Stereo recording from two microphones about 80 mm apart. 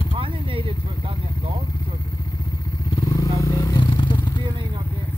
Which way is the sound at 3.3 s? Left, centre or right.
Left.